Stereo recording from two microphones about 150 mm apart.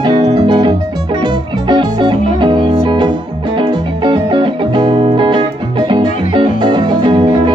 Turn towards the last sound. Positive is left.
turn(degrees=-30)  # may be behind; listen again after turning